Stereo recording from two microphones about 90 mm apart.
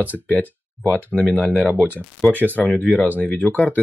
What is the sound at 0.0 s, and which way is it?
Speech, 20° left (ahead or behind).